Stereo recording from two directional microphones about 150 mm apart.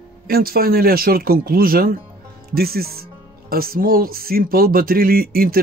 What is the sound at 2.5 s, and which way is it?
Speech, 90° right.